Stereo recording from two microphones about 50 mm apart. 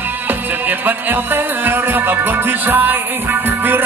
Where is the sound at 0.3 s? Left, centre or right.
Right.